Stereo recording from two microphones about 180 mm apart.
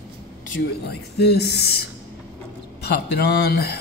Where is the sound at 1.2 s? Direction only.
65° left (ahead or behind).